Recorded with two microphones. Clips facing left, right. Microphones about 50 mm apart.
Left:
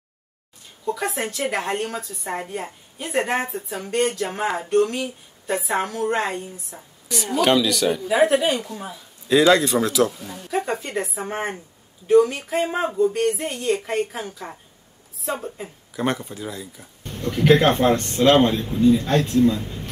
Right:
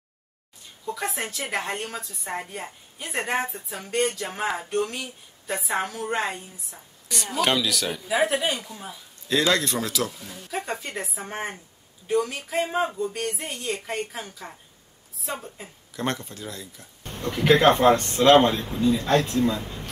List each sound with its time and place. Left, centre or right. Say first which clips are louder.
0.8 s a woman's voice: left 5 dB; centre
17.0 s a sound: left 3 dB; right
17.3 s a woman's voice: left 3 dB; centre
17.7 s speech: right 1 dB; right
18.5 s a woman's voice: left 5 dB; centre
18.9 s speech: left 5 dB; centre
19.5 s speech: left 2 dB; centre